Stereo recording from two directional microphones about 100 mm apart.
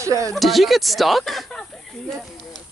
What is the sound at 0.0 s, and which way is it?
Speech, 35° right (ahead or behind).